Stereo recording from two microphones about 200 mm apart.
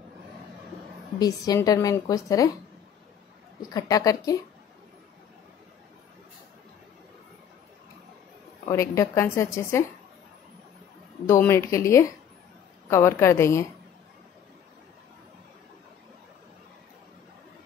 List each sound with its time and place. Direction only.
1.2 s a woman's voice: 20° left (ahead or behind)
3.7 s a woman's voice: 15° left (ahead or behind)
8.6 s a woman's voice: 15° left (ahead or behind)
11.2 s a woman's voice: 10° left (ahead or behind)